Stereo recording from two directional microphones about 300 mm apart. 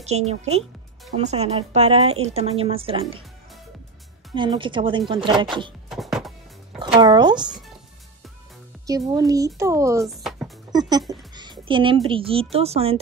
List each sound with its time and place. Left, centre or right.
0.3 s speech: right
4.4 s speech: centre
5.9 s music: centre
7.0 s speech: centre
8.8 s speech: centre
10.7 s a child's voice: centre